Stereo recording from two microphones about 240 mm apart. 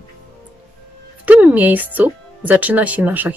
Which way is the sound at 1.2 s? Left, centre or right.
Centre.